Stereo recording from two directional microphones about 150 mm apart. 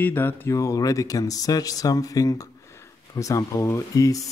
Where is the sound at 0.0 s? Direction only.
15° left (ahead or behind).